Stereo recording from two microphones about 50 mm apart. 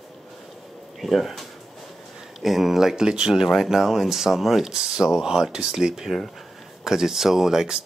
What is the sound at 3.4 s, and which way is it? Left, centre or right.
Speech, centre.